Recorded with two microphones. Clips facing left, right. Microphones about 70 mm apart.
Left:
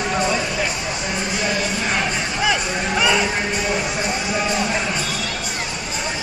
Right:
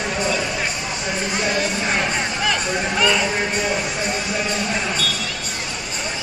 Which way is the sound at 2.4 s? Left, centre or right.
Centre.